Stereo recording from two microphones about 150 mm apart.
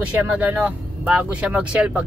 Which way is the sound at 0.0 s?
10° right (ahead or behind).